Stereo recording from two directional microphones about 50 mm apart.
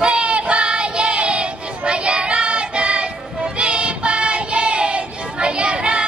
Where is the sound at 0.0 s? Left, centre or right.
Right.